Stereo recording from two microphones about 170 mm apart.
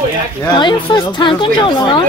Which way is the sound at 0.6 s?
25° left (ahead or behind).